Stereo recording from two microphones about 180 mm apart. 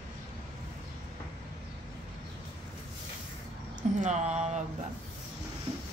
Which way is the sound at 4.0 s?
40° right (ahead or behind).